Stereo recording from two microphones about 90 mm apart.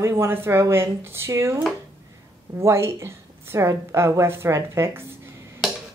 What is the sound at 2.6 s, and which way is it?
A woman's voice, 30° right (ahead or behind).